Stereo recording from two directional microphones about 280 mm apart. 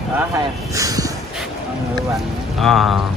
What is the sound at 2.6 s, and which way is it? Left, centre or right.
Speech, centre.